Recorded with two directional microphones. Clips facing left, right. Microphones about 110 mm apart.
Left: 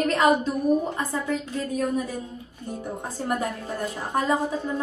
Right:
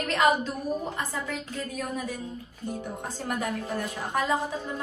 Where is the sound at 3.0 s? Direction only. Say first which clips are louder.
Left 5 dB; 35° left (ahead or behind).